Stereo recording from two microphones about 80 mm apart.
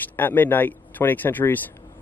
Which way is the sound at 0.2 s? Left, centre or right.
Left.